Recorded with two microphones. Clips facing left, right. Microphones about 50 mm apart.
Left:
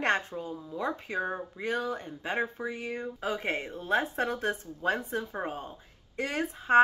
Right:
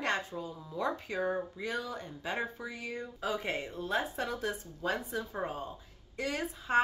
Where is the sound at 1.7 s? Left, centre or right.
Left.